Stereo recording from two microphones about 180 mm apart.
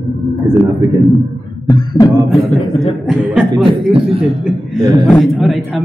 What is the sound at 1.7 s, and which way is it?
Speech, 20° left (ahead or behind).